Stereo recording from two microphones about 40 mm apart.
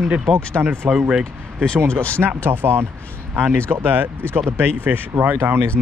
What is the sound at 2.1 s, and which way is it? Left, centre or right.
Speech, right.